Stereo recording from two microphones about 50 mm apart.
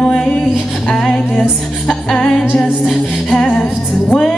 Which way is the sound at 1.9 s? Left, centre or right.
Centre.